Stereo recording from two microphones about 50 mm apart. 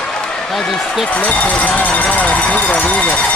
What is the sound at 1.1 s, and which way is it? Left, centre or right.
Speech, left.